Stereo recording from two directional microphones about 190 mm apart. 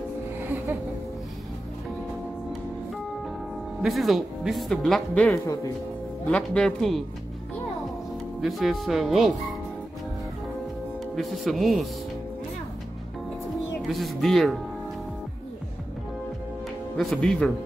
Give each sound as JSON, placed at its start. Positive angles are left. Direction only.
{"t": 0.4, "sound": "music", "side_deg": -15}
{"t": 3.8, "sound": "speech", "side_deg": 0}
{"t": 5.3, "sound": "speech", "side_deg": 15}
{"t": 6.3, "sound": "speech", "side_deg": 5}
{"t": 8.4, "sound": "speech", "side_deg": 0}
{"t": 11.1, "sound": "speech", "side_deg": 0}
{"t": 13.8, "sound": "speech", "side_deg": 0}
{"t": 16.9, "sound": "speech", "side_deg": 0}